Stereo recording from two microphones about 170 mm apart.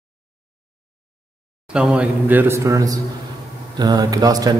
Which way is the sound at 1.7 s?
5° right (ahead or behind).